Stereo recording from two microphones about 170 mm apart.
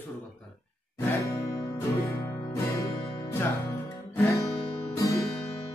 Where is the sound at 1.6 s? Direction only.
20° left (ahead or behind).